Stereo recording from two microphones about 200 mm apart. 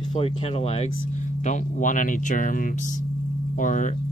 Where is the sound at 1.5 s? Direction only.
40° left (ahead or behind).